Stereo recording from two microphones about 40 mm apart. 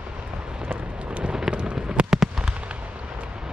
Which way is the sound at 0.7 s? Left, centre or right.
Right.